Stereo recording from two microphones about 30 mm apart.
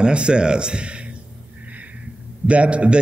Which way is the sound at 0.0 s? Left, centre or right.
Right.